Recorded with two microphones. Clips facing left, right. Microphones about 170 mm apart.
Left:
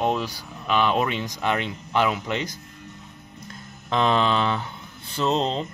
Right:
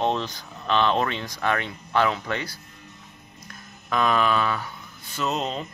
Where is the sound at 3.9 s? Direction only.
25° left (ahead or behind).